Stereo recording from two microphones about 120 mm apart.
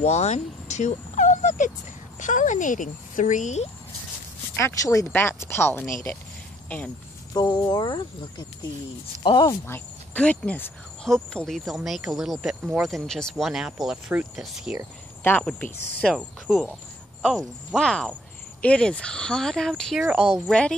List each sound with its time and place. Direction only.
0.0 s speech: 65° left (ahead or behind); by 3.6 s 85° left
4.6 s speech: 25° left (ahead or behind)
7.3 s speech: 35° left (ahead or behind)
9.7 s speech: 15° left (ahead or behind)
11.3 s speech: centre (ahead or behind)
15.2 s speech: 15° left (ahead or behind)
16.2 s speech: 5° right (ahead or behind)
17.7 s speech: 5° left (ahead or behind)